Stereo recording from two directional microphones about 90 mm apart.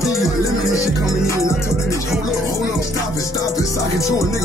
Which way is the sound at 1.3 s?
35° left (ahead or behind).